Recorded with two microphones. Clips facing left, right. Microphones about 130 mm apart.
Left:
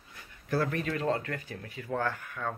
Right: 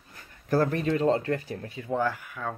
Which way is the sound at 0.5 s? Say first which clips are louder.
Right 6 dB; 35° right (ahead or behind).